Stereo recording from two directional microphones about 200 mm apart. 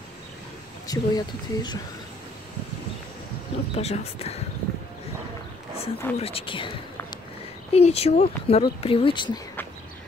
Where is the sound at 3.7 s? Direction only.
30° left (ahead or behind).